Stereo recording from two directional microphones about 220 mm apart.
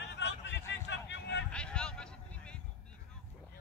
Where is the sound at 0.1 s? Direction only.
55° left (ahead or behind).